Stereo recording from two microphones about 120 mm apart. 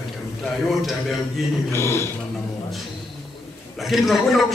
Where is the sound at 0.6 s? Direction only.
Centre (ahead or behind).